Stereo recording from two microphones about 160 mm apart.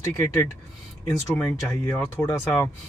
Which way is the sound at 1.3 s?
15° left (ahead or behind).